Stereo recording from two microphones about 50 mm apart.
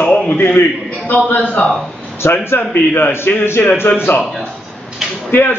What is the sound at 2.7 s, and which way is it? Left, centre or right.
A man's voice, left.